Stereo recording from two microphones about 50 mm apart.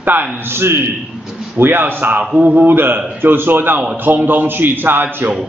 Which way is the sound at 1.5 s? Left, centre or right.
Right.